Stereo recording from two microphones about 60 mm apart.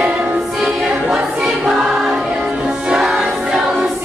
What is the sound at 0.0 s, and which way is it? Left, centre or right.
Music, right.